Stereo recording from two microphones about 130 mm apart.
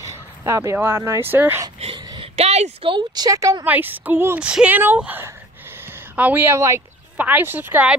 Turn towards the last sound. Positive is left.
turn(degrees=-10)  # may be behind; listen again after turning